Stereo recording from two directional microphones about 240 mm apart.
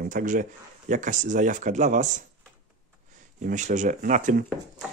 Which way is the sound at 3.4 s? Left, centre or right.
Right.